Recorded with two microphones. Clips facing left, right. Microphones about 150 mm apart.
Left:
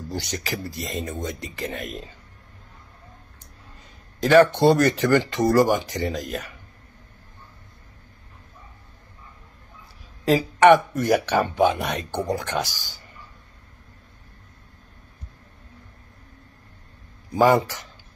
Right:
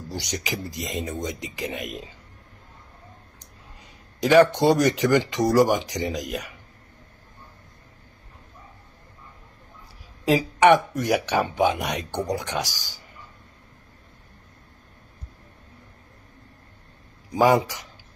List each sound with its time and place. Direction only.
0.2 s speech: 15° right (ahead or behind)
4.2 s speech: 15° right (ahead or behind)
5.9 s speech: 5° left (ahead or behind)
10.2 s speech: 10° right (ahead or behind)
17.3 s speech: 10° right (ahead or behind)